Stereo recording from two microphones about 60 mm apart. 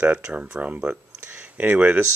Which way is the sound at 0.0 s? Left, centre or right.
Right.